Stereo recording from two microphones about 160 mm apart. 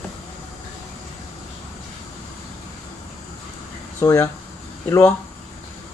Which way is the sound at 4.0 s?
20° left (ahead or behind).